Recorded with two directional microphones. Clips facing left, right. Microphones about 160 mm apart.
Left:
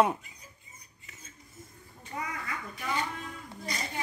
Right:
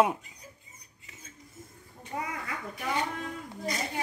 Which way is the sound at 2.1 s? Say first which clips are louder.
Right 2 dB; 50° right (ahead or behind).